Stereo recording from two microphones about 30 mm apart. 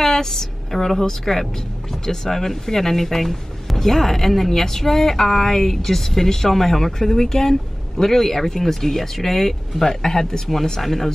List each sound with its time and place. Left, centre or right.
0.0 s a woman's voice: centre